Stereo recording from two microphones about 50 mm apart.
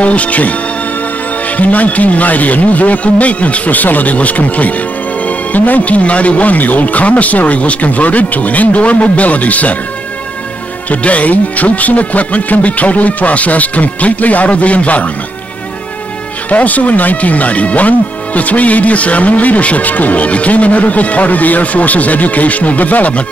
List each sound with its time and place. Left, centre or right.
0.0 s speech: left
1.6 s speech: left
10.9 s speech: left
16.4 s speech: left